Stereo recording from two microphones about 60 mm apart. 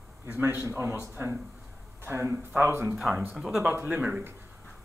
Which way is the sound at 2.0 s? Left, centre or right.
Right.